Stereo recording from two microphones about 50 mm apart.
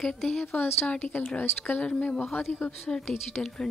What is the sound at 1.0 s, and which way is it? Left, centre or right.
Speech, left.